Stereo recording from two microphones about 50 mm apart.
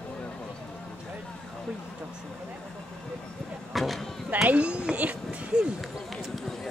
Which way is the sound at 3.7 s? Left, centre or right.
Centre.